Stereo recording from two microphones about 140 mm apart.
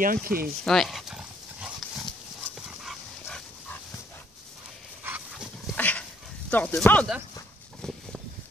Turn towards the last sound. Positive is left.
turn(degrees=10)  # may be behind; listen again after turning